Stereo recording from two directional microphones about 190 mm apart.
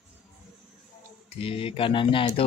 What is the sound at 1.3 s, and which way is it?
Speech, 30° left (ahead or behind).